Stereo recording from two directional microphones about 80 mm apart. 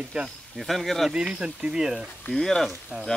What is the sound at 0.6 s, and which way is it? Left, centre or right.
Speech, centre.